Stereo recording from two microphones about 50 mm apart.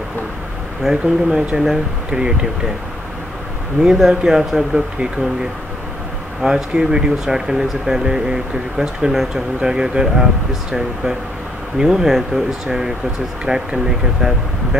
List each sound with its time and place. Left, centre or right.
0.8 s speech: centre
3.8 s speech: centre
6.4 s speech: centre
11.8 s speech: centre